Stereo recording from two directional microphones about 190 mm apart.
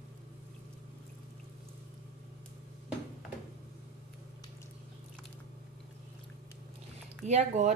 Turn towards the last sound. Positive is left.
turn(degrees=-35)  # may be behind; listen again after turning